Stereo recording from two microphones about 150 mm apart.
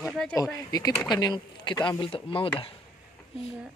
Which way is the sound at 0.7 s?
25° left (ahead or behind).